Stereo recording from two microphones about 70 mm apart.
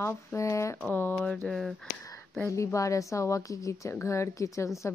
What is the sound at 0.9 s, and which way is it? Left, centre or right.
Speech, left.